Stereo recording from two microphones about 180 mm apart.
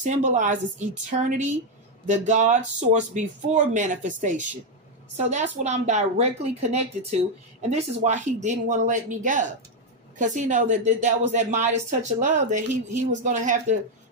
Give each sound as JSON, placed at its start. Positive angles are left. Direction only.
{"t": 0.0, "sound": "speech", "side_deg": -45}